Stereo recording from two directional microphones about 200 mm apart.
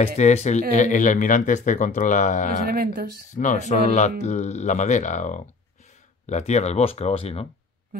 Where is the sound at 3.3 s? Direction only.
40° left (ahead or behind).